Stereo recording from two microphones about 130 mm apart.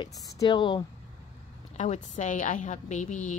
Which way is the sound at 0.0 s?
35° left (ahead or behind).